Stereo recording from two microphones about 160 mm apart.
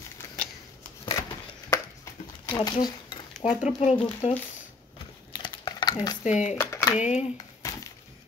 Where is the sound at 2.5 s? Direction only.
25° left (ahead or behind).